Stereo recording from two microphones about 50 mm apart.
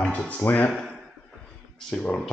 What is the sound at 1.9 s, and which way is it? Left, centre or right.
Speech, centre.